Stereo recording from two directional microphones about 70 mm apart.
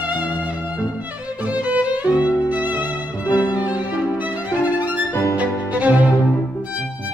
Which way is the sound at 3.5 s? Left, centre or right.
Left.